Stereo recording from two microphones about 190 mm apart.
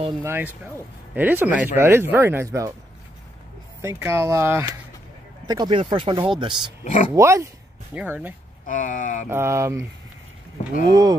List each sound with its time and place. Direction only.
0.2 s speech: 10° right (ahead or behind)
3.8 s speech: 15° right (ahead or behind)
5.5 s speech: 25° right (ahead or behind)
6.8 s speech: 40° left (ahead or behind)
7.2 s speech: 15° right (ahead or behind)
8.6 s speech: 45° left (ahead or behind)
9.3 s speech: 15° right (ahead or behind)
10.9 s speech: 20° right (ahead or behind)